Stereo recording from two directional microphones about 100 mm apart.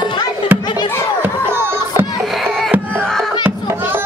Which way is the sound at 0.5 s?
20° right (ahead or behind).